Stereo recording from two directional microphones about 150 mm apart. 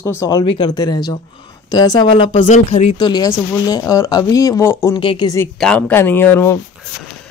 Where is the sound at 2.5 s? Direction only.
45° left (ahead or behind).